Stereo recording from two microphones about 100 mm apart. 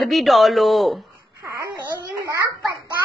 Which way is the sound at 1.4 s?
30° right (ahead or behind).